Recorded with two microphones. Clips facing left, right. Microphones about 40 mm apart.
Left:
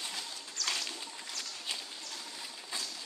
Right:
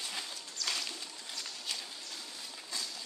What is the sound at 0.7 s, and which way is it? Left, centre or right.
Bird, centre.